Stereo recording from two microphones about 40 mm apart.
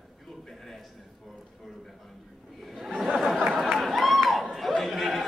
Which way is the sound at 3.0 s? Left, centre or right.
Centre.